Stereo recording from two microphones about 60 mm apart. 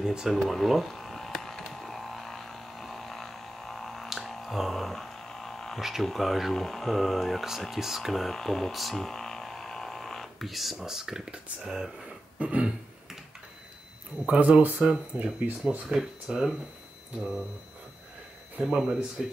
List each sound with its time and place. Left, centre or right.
0.0 s speech: centre
0.4 s electric shaver: centre
5.8 s speech: centre
12.4 s speech: right
14.1 s speech: right
15.9 s speech: centre
18.6 s speech: centre